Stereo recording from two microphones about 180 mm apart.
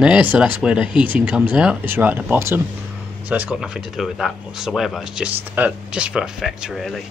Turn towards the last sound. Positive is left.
turn(degrees=0)  # may be behind; listen again after turning